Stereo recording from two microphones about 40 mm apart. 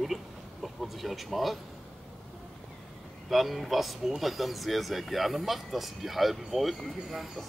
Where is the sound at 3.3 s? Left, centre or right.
Centre.